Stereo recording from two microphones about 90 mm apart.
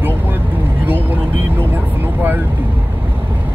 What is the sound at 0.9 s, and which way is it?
Speech, 20° right (ahead or behind).